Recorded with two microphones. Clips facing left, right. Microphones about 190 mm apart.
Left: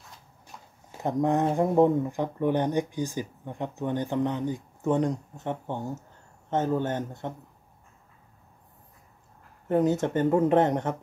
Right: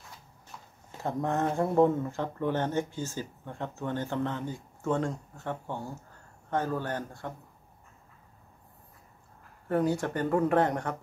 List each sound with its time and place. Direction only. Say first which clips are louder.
1.0 s speech: left 5 dB; 15° left (ahead or behind)
9.7 s speech: left 4 dB; 20° left (ahead or behind)